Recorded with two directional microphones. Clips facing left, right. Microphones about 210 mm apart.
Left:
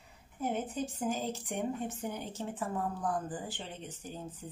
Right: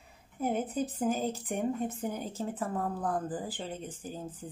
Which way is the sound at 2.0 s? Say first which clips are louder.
Right 3 dB; 40° right (ahead or behind).